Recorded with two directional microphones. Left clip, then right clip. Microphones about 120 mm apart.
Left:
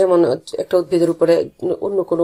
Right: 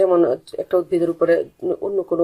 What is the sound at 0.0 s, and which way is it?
Speech, 25° left (ahead or behind).